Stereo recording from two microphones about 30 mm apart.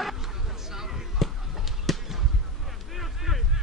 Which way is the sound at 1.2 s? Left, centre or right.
Centre.